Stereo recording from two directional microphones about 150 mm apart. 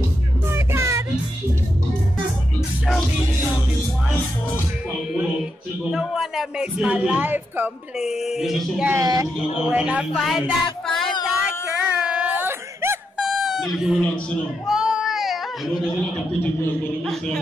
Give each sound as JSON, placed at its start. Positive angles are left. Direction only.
{"t": 0.5, "sound": "music", "side_deg": -15}
{"t": 5.9, "sound": "speech", "side_deg": 0}
{"t": 8.0, "sound": "speech", "side_deg": -5}
{"t": 8.9, "sound": "speech", "side_deg": -25}
{"t": 9.7, "sound": "speech", "side_deg": -10}
{"t": 11.4, "sound": "a sound", "side_deg": -5}
{"t": 13.4, "sound": "a sound", "side_deg": 0}
{"t": 13.7, "sound": "speech", "side_deg": -5}
{"t": 14.7, "sound": "a sound", "side_deg": -5}
{"t": 17.0, "sound": "speech", "side_deg": 0}